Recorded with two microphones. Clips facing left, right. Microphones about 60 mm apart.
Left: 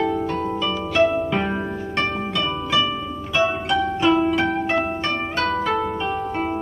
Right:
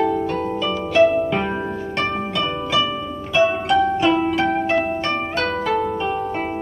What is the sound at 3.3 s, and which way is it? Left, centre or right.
Pizzicato, centre.